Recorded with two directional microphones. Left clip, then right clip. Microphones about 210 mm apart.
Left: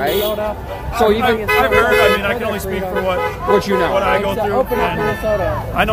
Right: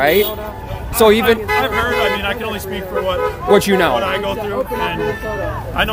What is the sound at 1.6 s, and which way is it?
Speech, 5° right (ahead or behind).